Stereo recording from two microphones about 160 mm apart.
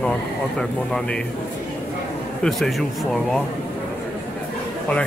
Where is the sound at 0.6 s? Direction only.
5° left (ahead or behind).